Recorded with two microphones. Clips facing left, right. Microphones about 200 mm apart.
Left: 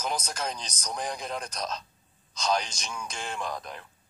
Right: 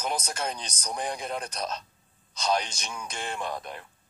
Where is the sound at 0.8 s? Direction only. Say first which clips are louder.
Right 2 dB; 10° right (ahead or behind).